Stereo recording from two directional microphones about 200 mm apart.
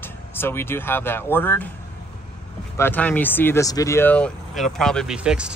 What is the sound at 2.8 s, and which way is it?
Speech, 10° left (ahead or behind).